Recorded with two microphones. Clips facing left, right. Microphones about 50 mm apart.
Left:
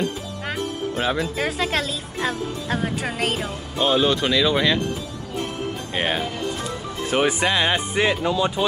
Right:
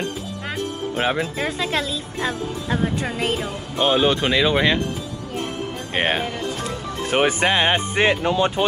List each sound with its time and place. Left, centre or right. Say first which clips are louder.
0.9 s speech: right 2 dB; right
1.3 s speech: even; centre
3.7 s speech: right 1 dB; centre
5.9 s speech: right 3 dB; right